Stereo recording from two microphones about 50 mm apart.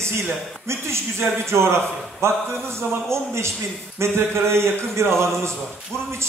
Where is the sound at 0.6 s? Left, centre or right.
Right.